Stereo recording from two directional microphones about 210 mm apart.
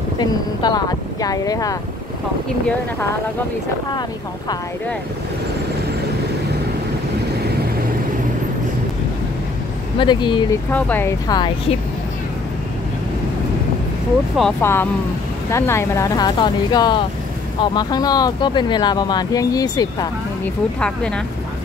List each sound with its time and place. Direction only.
0.2 s speech: 20° left (ahead or behind)
9.9 s speech: 20° left (ahead or behind)
10.7 s speech: 10° left (ahead or behind)
14.6 s speech: 10° left (ahead or behind)
20.8 s speech: 5° left (ahead or behind)